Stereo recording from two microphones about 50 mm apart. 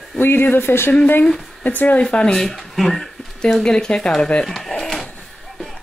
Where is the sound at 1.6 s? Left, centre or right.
Left.